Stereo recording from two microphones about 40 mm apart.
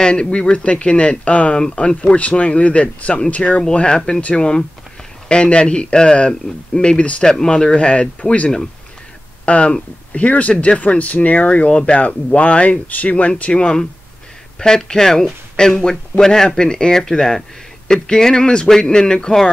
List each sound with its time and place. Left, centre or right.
0.0 s speech: left
3.7 s speech: left
7.2 s a man's voice: centre
7.7 s speech: left
9.5 s a man's voice: left